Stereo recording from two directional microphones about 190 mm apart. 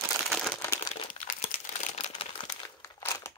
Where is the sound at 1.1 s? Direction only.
30° left (ahead or behind).